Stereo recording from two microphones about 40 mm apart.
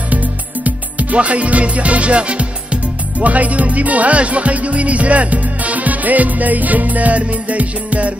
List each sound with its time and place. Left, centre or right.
0.1 s music: right